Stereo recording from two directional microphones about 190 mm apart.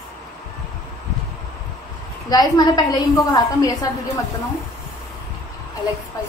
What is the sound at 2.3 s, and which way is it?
A woman's voice, 20° left (ahead or behind).